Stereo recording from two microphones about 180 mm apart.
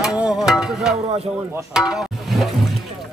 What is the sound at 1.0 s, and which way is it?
Speech, 35° right (ahead or behind).